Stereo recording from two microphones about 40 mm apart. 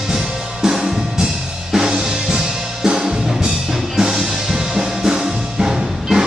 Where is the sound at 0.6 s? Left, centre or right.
Centre.